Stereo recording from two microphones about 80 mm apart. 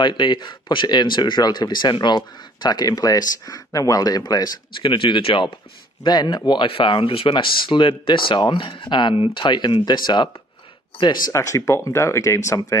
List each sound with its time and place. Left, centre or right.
0.0 s speech: left
4.7 s speech: left
6.0 s speech: left
11.3 s speech: left